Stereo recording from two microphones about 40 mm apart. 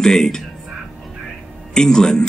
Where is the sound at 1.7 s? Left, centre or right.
Centre.